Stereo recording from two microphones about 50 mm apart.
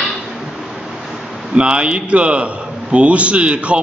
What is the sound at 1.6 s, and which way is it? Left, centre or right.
A man's voice, right.